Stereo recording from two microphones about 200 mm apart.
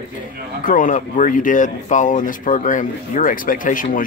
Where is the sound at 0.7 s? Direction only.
40° left (ahead or behind).